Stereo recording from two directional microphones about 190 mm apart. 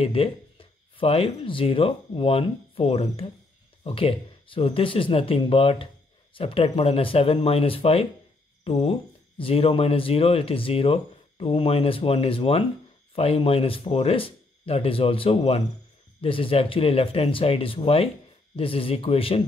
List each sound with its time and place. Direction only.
0.0 s speech: 30° left (ahead or behind)